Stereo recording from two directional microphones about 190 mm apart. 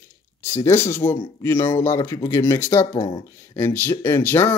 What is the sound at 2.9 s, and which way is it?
Speech, 30° left (ahead or behind).